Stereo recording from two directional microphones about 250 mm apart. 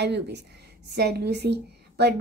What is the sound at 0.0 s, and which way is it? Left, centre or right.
A woman's voice, right.